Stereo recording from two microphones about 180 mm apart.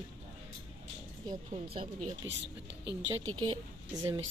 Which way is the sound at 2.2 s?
90° right.